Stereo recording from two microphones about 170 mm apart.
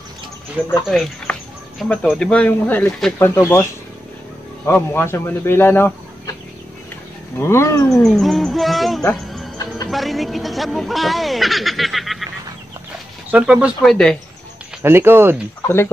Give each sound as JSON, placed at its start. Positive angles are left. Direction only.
{"t": 0.8, "sound": "speech", "side_deg": 0}
{"t": 4.6, "sound": "speech", "side_deg": 15}
{"t": 7.3, "sound": "speech", "side_deg": 15}
{"t": 8.0, "sound": "speech", "side_deg": 0}
{"t": 13.3, "sound": "speech", "side_deg": -5}
{"t": 14.8, "sound": "speech", "side_deg": -15}
{"t": 15.6, "sound": "speech", "side_deg": 15}